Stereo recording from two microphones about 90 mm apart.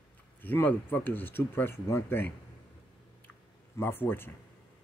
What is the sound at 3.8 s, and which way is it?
Speech, 25° left (ahead or behind).